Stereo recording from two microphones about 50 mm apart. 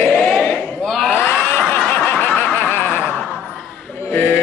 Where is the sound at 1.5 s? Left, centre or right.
Left.